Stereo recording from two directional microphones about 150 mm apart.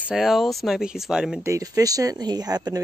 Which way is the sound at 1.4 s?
20° right (ahead or behind).